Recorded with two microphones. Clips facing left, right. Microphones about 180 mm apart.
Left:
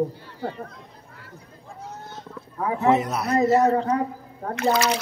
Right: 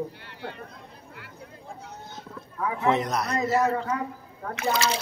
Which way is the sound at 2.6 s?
35° left (ahead or behind).